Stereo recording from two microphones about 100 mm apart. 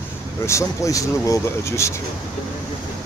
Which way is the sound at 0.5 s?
30° left (ahead or behind).